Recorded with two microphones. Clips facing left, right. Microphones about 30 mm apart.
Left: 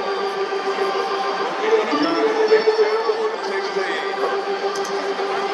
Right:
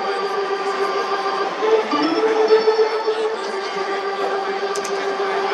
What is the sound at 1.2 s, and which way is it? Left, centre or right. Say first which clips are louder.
Music: right 2 dB; centre.